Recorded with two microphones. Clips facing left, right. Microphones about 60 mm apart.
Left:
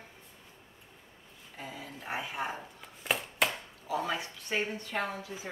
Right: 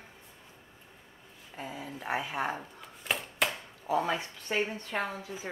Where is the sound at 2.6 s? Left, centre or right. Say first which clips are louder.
Right 1 dB; centre.